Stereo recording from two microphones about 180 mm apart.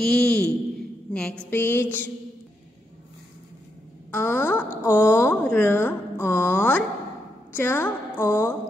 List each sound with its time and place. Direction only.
0.0 s a woman's voice: 5° left (ahead or behind)
4.1 s a woman's voice: 10° left (ahead or behind)